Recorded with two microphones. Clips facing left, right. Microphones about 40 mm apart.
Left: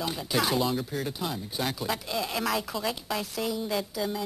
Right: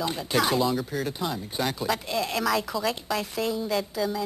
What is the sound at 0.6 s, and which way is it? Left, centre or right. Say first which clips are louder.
Speech: right 3 dB; centre.